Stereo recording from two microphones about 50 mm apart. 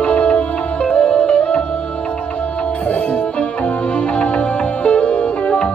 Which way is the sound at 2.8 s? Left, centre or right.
Left.